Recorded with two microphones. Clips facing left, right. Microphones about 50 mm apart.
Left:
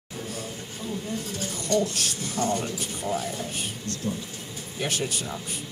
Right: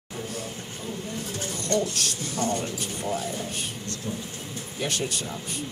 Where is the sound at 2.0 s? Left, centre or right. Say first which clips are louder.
Even; centre.